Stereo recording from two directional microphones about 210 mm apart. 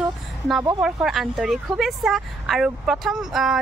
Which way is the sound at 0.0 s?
Centre (ahead or behind).